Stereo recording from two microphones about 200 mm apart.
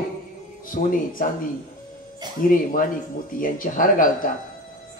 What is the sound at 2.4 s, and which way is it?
A man's voice, 45° left (ahead or behind).